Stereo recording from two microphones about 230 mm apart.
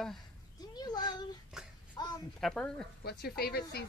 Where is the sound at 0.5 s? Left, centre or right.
Centre.